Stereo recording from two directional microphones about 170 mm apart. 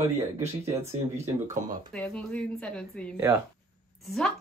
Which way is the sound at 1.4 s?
45° right (ahead or behind).